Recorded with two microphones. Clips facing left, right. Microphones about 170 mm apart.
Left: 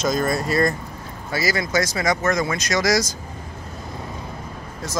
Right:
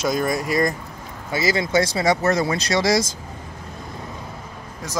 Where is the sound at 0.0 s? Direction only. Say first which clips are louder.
Even; 10° right (ahead or behind); by 3.1 s 25° right (ahead or behind).